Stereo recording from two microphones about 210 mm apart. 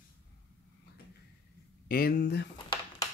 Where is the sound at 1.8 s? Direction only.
45° left (ahead or behind).